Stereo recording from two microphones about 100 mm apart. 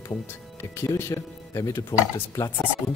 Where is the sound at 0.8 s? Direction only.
25° left (ahead or behind).